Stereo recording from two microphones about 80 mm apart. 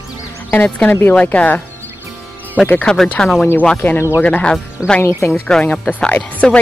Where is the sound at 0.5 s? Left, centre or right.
Left.